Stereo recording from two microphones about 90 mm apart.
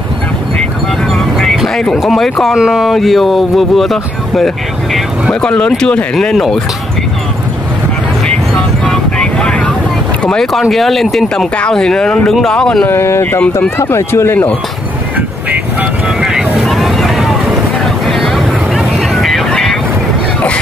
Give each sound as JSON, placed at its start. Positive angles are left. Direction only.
{"t": 1.0, "sound": "speech", "side_deg": 5}
{"t": 8.5, "sound": "vehicle", "side_deg": 10}
{"t": 10.2, "sound": "speech", "side_deg": 5}
{"t": 12.9, "sound": "speech", "side_deg": 25}
{"t": 16.2, "sound": "boat", "side_deg": -5}
{"t": 18.0, "sound": "vehicle", "side_deg": 0}